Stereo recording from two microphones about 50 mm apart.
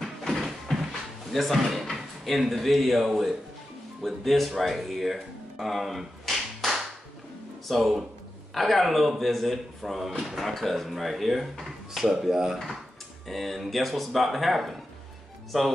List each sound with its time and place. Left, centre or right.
0.3 s a sound: centre
1.3 s speech: centre
13.3 s speech: centre